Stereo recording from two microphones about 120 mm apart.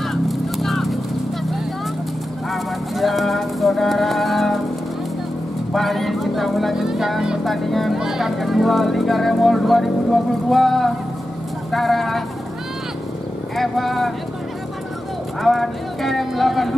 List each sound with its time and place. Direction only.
0.0 s a sound: centre (ahead or behind)
2.5 s music: centre (ahead or behind)
5.7 s speech: centre (ahead or behind)
13.6 s speech: centre (ahead or behind)
15.4 s speech: centre (ahead or behind)